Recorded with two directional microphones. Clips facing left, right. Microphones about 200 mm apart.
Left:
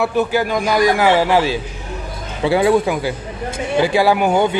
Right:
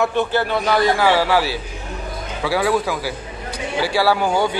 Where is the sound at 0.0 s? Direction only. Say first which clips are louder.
Left 2 dB; 10° left (ahead or behind).